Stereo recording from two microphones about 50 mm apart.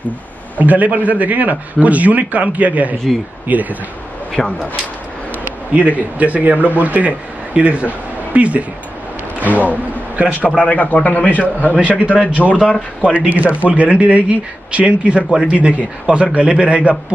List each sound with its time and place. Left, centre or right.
0.6 s a man's voice: right
4.3 s speech: centre
5.7 s a man's voice: right
9.4 s a sound: right
10.6 s a man's voice: left
12.4 s speech: centre
13.0 s a man's voice: right
13.3 s a man's voice: right